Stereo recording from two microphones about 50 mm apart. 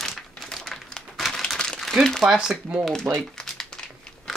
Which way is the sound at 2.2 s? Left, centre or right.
Centre.